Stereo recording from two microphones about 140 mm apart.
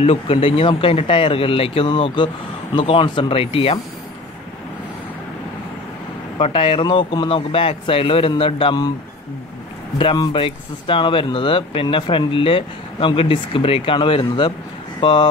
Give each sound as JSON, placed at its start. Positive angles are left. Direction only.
{"t": 0.0, "sound": "speech", "side_deg": 45}
{"t": 6.3, "sound": "speech", "side_deg": 40}
{"t": 9.9, "sound": "speech", "side_deg": 35}